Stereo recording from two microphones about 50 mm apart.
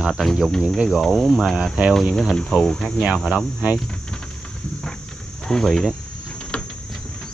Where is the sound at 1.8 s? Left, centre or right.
Right.